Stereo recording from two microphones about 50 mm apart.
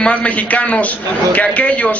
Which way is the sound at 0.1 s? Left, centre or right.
Left.